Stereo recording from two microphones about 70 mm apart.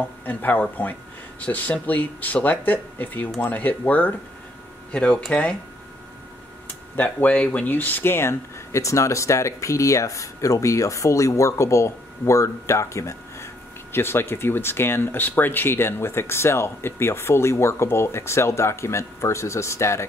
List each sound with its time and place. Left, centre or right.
0.2 s speech: left
7.0 s speech: left